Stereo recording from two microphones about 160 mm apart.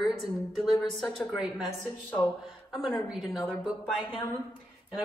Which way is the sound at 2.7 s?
5° right (ahead or behind).